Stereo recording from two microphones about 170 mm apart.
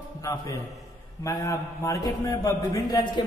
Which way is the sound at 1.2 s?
20° left (ahead or behind).